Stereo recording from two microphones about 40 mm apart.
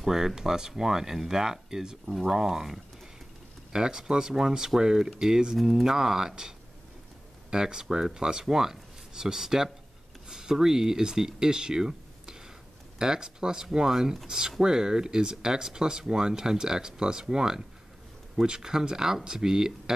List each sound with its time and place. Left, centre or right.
0.0 s speech: centre
5.6 s speech: centre
7.5 s speech: centre
10.2 s a sound: centre
10.5 s speech: centre